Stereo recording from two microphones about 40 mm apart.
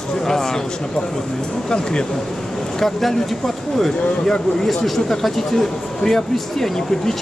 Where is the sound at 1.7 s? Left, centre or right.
Left.